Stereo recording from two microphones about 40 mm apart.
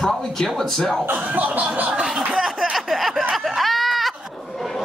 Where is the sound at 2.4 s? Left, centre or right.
Centre.